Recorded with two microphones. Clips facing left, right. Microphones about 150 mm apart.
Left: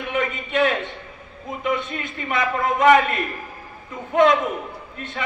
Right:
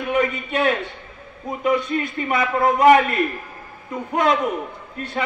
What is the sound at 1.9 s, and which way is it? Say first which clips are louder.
A man's voice: right 6 dB; 40° right (ahead or behind).